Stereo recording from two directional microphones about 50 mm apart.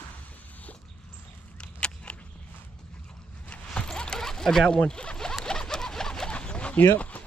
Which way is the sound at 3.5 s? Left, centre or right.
Centre.